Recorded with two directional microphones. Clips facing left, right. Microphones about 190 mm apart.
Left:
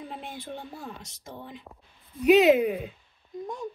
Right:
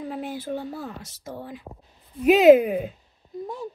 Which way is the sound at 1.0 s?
5° right (ahead or behind).